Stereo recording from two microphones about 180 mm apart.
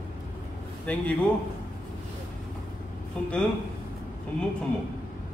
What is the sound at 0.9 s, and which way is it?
Speech, 5° left (ahead or behind).